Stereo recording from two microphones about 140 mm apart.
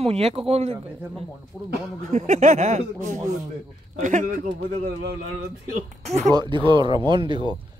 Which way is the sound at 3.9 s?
75° right (ahead or behind).